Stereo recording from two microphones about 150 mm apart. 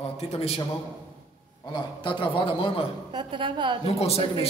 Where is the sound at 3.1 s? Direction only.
30° right (ahead or behind).